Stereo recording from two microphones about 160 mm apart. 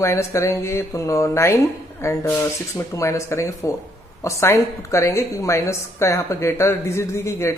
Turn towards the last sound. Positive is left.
turn(degrees=20)  # may be behind; listen again after turning